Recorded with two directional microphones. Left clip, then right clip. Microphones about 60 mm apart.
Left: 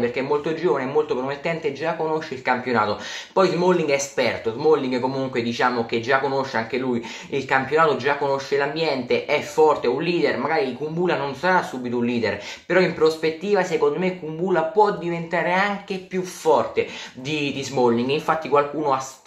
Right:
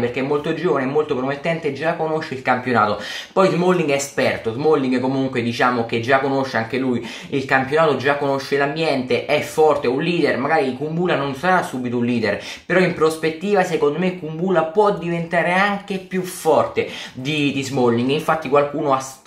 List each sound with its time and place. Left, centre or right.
0.1 s speech: left
17.3 s speech: left